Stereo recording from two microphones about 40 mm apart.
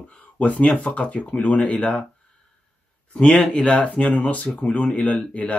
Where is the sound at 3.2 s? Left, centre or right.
Left.